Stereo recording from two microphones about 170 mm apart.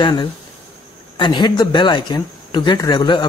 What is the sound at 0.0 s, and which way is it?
Speech, 25° left (ahead or behind).